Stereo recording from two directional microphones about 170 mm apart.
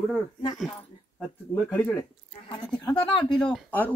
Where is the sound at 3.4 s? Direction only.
5° left (ahead or behind).